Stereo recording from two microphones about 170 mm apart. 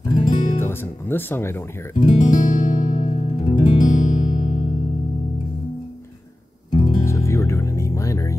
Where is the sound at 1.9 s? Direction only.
45° left (ahead or behind).